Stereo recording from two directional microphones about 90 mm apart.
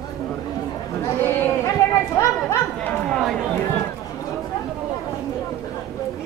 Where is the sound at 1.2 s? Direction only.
25° left (ahead or behind).